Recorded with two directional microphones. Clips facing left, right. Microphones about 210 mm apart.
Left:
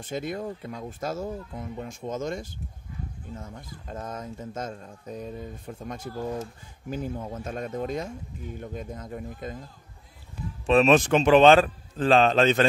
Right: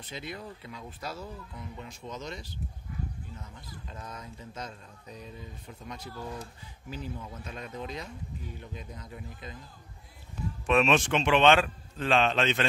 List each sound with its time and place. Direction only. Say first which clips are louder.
0.0 s speech: left 9 dB; 45° left (ahead or behind)
10.7 s a man's voice: left 6 dB; 35° left (ahead or behind)